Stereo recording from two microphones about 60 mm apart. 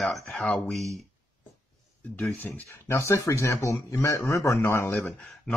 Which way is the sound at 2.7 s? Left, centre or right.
Left.